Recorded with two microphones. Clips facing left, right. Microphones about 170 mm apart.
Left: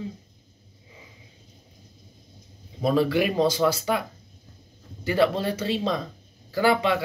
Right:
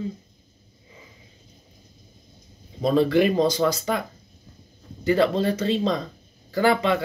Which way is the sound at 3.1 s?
5° left (ahead or behind).